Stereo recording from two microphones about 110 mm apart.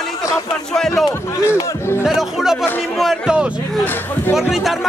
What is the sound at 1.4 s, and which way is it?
Speech, 20° left (ahead or behind).